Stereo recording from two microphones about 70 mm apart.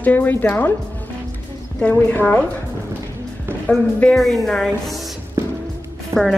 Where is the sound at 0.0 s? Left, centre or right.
Left.